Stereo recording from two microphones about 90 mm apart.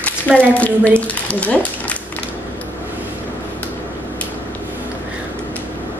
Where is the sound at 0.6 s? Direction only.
15° left (ahead or behind).